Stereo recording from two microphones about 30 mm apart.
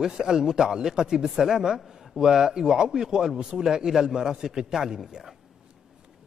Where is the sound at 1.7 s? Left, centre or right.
Centre.